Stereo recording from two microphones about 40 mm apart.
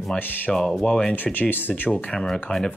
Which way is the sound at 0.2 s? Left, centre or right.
Left.